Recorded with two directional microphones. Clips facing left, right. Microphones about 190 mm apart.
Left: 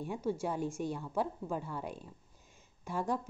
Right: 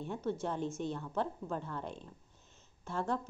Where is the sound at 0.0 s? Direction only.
10° left (ahead or behind).